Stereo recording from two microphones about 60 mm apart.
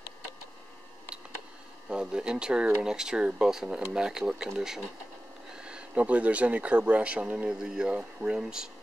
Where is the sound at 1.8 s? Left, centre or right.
Centre.